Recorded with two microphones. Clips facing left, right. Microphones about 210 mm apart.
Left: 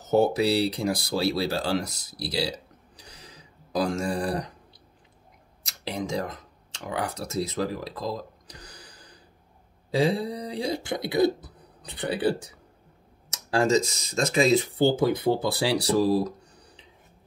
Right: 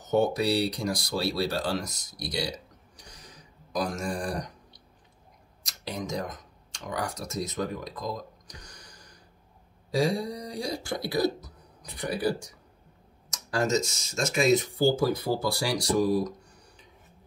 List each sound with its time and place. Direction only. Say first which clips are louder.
0.1 s speech: left 3 dB; 30° left (ahead or behind)
3.0 s a sound: left 2 dB; 30° left (ahead or behind)
5.6 s speech: left 3 dB; 30° left (ahead or behind)